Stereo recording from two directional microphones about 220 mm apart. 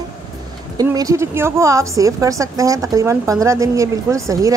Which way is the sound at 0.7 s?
15° right (ahead or behind).